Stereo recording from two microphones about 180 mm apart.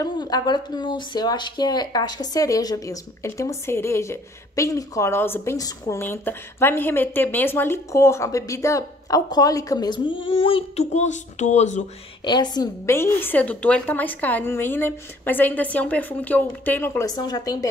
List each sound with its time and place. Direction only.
0.0 s speech: 25° left (ahead or behind); by 11.8 s 40° left (ahead or behind)
12.3 s a woman's voice: 25° left (ahead or behind)